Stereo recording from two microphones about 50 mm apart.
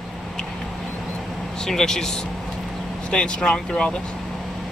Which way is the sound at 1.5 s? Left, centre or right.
Centre.